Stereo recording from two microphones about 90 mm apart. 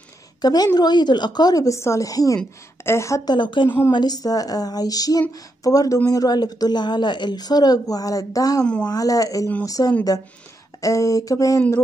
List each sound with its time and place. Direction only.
0.4 s a woman's voice: 45° left (ahead or behind); by 3.2 s 30° left (ahead or behind)
3.3 s speech: 60° left (ahead or behind)
3.6 s a woman's voice: 25° left (ahead or behind)
3.9 s speech: 50° left (ahead or behind)